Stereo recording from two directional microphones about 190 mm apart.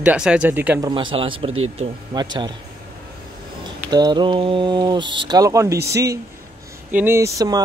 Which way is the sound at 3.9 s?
25° right (ahead or behind).